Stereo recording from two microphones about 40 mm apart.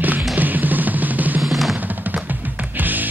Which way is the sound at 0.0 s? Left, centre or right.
Right.